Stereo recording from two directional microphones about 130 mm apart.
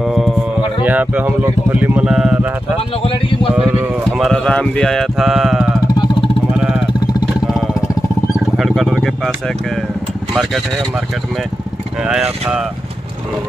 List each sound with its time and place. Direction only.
0.0 s music: centre (ahead or behind)
0.8 s speech: 10° right (ahead or behind)
3.5 s speech: 5° right (ahead or behind)
4.3 s speech: 5° left (ahead or behind)
6.5 s vehicle: 5° right (ahead or behind)
8.5 s speech: centre (ahead or behind)
12.1 s speech: 5° right (ahead or behind)